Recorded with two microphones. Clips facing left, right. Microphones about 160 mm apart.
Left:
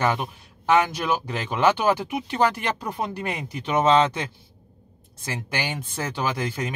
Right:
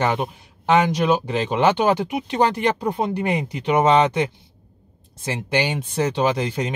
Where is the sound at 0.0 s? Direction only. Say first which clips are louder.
Right 2 dB; 20° right (ahead or behind).